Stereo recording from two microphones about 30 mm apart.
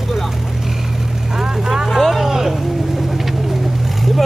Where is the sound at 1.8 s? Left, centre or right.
Centre.